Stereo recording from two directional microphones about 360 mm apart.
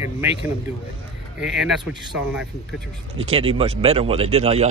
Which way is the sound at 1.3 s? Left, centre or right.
Centre.